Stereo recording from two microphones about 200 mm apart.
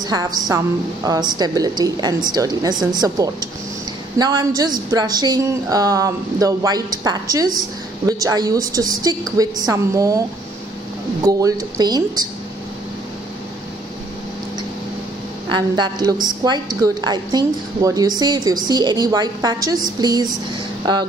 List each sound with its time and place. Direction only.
0.0 s a woman's voice: 20° right (ahead or behind)
11.2 s a woman's voice: 15° right (ahead or behind)
15.5 s a woman's voice: 20° right (ahead or behind)